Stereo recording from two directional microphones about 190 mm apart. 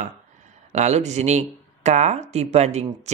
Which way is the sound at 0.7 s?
35° right (ahead or behind).